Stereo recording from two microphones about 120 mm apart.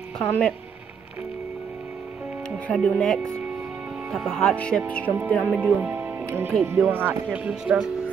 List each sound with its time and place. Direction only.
0.2 s speech: 10° left (ahead or behind)
2.7 s speech: 5° left (ahead or behind)
5.6 s speech: 15° right (ahead or behind)